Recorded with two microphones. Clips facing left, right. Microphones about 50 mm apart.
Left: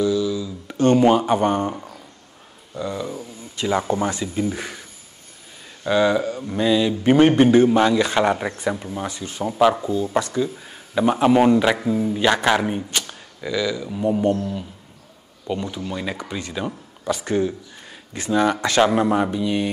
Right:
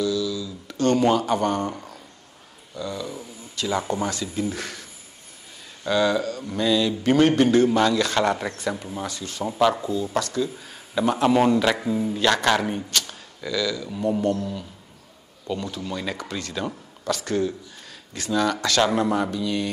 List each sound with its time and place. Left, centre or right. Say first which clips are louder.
0.0 s a sound: left 4 dB; left
2.7 s a man's voice: left 4 dB; left
5.9 s a man's voice: left 3 dB; centre